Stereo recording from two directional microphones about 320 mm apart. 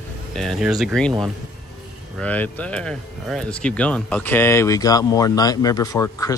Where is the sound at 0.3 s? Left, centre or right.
Centre.